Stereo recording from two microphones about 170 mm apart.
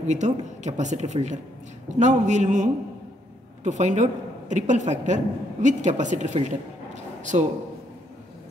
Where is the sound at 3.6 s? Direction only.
45° right (ahead or behind).